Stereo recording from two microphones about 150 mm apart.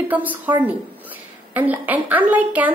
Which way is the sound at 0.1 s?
10° right (ahead or behind).